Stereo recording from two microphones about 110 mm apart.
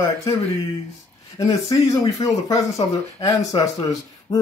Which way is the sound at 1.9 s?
35° left (ahead or behind).